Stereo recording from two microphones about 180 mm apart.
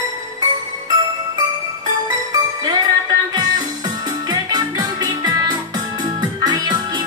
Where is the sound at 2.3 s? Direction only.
20° right (ahead or behind).